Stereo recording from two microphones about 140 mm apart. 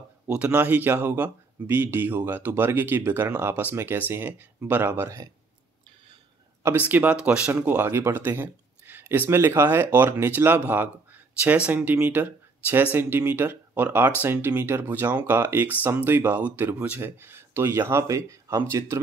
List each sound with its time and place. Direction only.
0.3 s speech: 10° right (ahead or behind)
6.6 s speech: 15° right (ahead or behind)